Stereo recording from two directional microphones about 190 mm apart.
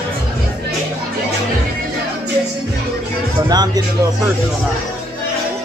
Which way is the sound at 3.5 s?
20° right (ahead or behind).